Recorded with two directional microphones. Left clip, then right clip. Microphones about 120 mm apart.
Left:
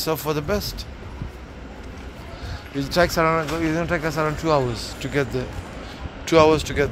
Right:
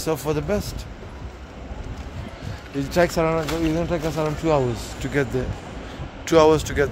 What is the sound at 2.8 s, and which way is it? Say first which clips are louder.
Speech: left 1 dB; 25° right (ahead or behind).